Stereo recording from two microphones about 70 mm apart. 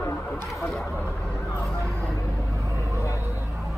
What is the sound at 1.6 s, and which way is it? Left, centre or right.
Vehicle, centre.